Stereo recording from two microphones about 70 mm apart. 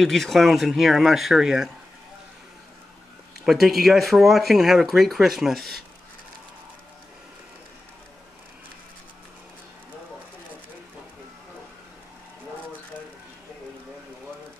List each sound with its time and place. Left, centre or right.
0.0 s speech: centre
3.4 s speech: centre